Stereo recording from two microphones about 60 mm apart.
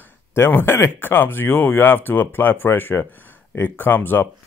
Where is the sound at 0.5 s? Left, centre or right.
Left.